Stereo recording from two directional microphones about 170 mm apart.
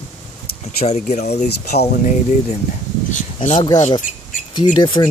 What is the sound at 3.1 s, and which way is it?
Speech, 50° left (ahead or behind).